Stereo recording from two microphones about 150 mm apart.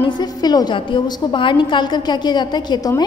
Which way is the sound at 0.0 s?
25° left (ahead or behind).